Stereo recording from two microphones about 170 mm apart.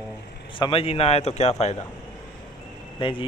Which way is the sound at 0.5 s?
30° left (ahead or behind).